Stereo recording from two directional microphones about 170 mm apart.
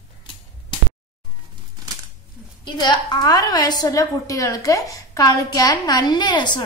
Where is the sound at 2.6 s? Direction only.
25° left (ahead or behind).